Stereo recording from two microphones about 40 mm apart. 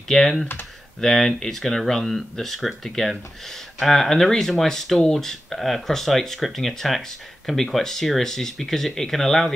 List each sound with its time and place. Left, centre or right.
0.1 s speech: centre